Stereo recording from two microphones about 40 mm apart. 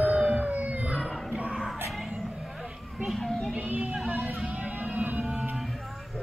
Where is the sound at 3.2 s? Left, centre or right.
Centre.